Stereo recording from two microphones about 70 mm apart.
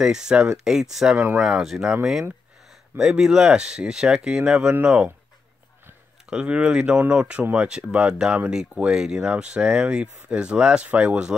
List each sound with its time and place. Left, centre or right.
0.0 s speech: centre
3.0 s speech: centre
6.3 s speech: centre